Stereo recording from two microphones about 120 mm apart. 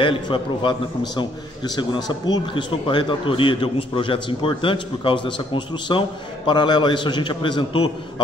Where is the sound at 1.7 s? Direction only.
35° left (ahead or behind).